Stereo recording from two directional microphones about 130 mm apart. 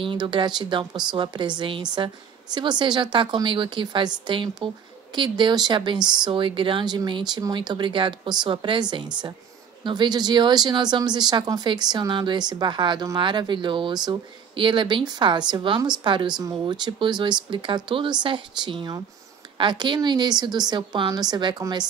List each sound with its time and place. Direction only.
0.0 s speech: 40° right (ahead or behind)